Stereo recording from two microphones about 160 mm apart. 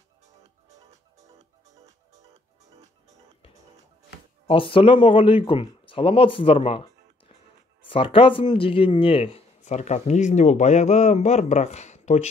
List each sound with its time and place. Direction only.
4.5 s speech: 35° left (ahead or behind)
7.9 s speech: 35° left (ahead or behind)